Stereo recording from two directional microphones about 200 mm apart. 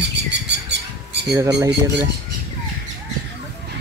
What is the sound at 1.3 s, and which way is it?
Speech, 15° right (ahead or behind).